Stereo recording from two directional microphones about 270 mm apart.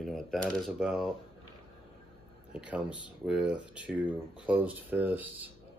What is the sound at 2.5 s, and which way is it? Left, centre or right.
Speech, centre.